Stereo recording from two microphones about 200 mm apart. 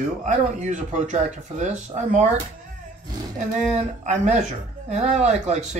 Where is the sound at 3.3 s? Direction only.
35° right (ahead or behind).